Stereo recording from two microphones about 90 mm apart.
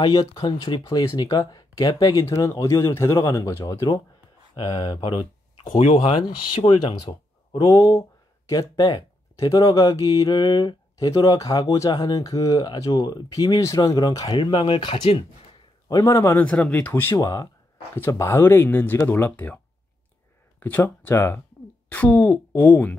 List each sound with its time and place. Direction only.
0.4 s speech: 50° left (ahead or behind)
1.6 s speech: 45° left (ahead or behind); by 3.8 s 30° left (ahead or behind)
4.7 s speech: 60° left (ahead or behind); by 6.1 s 85° left
6.6 s speech: 55° left (ahead or behind)
7.1 s a sound: 70° left (ahead or behind)
8.5 s speech: 45° left (ahead or behind); by 15.2 s 70° left (ahead or behind)
15.9 s speech: 40° left (ahead or behind)
16.3 s speech: 15° left (ahead or behind)
17.1 s speech: 40° left (ahead or behind); by 22.9 s 20° left (ahead or behind)